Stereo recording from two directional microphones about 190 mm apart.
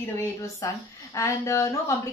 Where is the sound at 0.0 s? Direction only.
15° left (ahead or behind).